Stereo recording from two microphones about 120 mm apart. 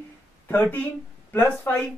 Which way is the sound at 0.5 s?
15° left (ahead or behind).